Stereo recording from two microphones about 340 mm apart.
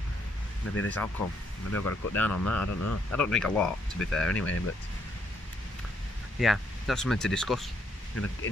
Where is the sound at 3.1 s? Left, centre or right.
Centre.